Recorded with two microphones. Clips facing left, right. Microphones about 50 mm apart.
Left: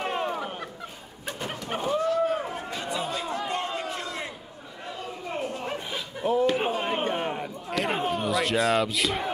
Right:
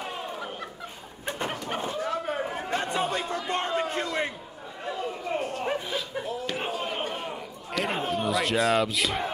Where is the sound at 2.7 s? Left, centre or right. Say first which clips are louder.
Right 5 dB; right.